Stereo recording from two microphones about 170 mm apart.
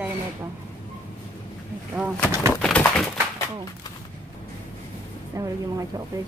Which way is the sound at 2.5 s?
10° left (ahead or behind).